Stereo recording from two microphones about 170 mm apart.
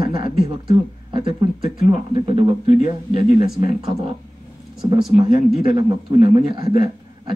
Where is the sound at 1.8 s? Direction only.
30° right (ahead or behind).